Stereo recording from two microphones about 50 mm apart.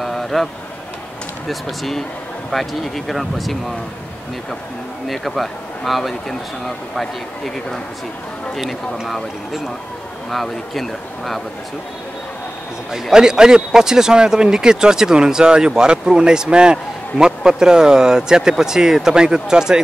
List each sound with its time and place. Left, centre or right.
0.0 s a sound: centre
1.5 s speech: centre
5.0 s speech: centre
10.3 s speech: centre
13.1 s speech: centre